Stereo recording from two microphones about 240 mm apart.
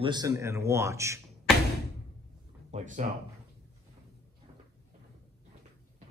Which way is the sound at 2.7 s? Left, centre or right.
Right.